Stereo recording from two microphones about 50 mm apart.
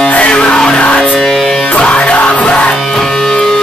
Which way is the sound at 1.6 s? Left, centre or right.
Left.